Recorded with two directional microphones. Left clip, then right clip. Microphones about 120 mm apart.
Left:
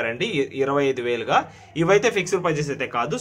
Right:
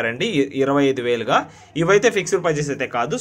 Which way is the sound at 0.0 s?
30° right (ahead or behind).